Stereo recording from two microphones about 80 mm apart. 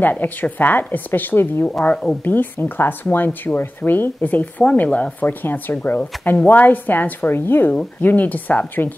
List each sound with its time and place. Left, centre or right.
0.0 s speech: left